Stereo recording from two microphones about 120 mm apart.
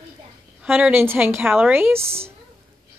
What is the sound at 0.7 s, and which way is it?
Speech, 15° right (ahead or behind).